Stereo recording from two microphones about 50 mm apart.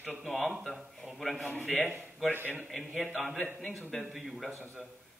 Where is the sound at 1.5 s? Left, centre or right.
Left.